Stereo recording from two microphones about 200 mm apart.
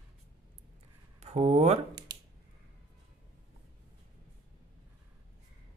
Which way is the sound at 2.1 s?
20° right (ahead or behind).